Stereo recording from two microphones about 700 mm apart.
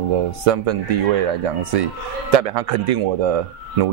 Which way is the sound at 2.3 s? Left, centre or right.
Right.